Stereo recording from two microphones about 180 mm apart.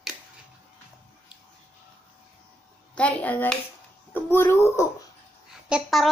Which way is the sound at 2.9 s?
5° left (ahead or behind).